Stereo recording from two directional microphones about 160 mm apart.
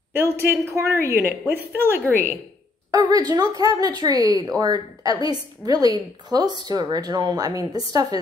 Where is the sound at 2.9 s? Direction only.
25° right (ahead or behind).